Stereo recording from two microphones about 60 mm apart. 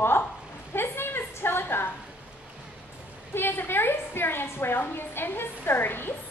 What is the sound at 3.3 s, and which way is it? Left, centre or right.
A woman's voice, left.